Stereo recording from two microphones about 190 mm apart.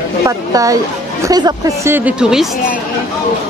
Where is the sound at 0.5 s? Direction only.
20° right (ahead or behind).